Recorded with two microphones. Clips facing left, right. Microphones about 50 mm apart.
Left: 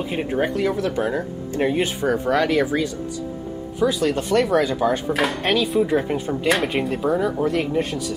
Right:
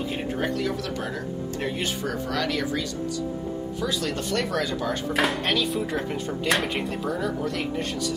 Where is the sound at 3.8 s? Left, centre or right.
Centre.